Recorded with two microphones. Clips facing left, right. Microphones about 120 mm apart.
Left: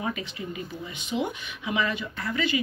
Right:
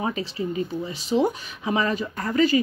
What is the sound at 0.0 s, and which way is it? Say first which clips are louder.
Speech: right 5 dB; 30° right (ahead or behind).